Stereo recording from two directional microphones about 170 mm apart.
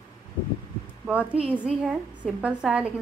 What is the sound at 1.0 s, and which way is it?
A woman's voice, 5° right (ahead or behind).